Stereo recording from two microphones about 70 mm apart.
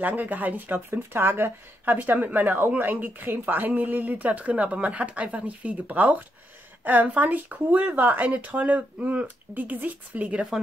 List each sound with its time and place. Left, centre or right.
0.0 s speech: right